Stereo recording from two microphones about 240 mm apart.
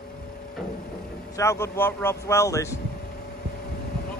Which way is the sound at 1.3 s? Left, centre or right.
Centre.